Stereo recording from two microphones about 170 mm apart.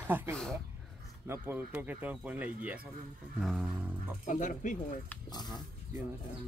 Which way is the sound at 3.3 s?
5° right (ahead or behind).